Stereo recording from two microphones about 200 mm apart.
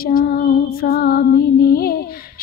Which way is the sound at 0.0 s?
45° left (ahead or behind).